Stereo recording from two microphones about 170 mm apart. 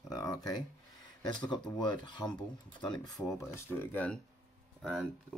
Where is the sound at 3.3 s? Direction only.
15° left (ahead or behind).